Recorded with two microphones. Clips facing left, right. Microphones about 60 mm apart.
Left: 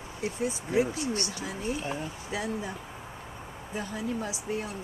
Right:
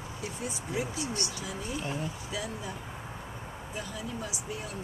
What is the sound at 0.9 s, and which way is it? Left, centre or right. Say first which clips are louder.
Speech: left 3 dB; left.